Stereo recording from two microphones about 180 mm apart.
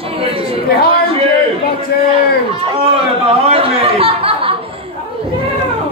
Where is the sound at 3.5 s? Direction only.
30° right (ahead or behind).